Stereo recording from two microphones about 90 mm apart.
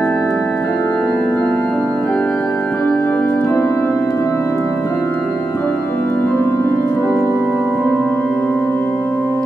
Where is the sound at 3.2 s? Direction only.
20° left (ahead or behind).